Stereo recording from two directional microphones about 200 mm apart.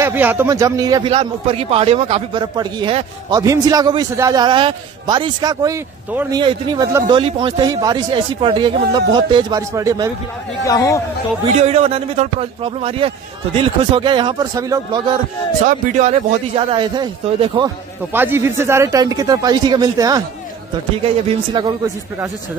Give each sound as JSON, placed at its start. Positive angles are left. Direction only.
{"t": 0.0, "sound": "a man's voice", "side_deg": -10}
{"t": 10.6, "sound": "speech", "side_deg": 15}
{"t": 11.6, "sound": "a man's voice", "side_deg": -30}
{"t": 15.6, "sound": "a man's voice", "side_deg": -35}
{"t": 18.1, "sound": "speech", "side_deg": -10}
{"t": 21.5, "sound": "a man's voice", "side_deg": -20}